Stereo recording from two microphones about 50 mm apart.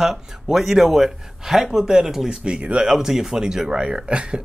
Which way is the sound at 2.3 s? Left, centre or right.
Centre.